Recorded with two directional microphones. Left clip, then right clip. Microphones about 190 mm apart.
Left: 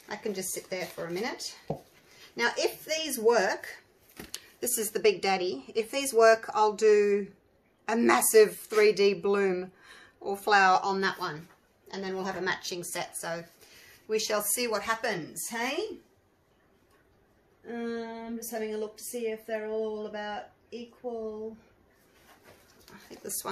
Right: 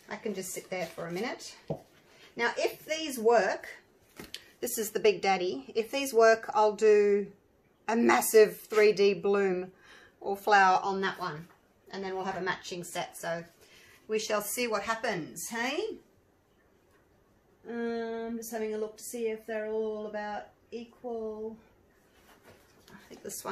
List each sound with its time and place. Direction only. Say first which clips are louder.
0.1 s speech: left 2 dB; 40° left (ahead or behind)
2.3 s speech: left 2 dB; 40° left (ahead or behind)
4.6 s a woman's voice: left 1 dB; 10° left (ahead or behind)
11.9 s a woman's voice: left 1 dB; 45° left (ahead or behind)
12.6 s a woman's voice: left 1 dB; 25° left (ahead or behind); by 15.8 s centre (ahead or behind)
17.6 s speech: right 2 dB; 10° left (ahead or behind)
22.8 s a sound: left 2 dB; 25° left (ahead or behind)